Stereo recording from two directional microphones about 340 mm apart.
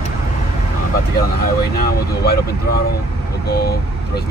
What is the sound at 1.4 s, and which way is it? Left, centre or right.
Speech, left.